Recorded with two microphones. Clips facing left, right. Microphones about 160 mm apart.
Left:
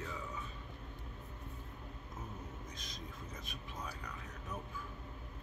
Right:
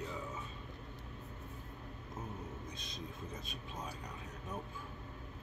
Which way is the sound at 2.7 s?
25° right (ahead or behind).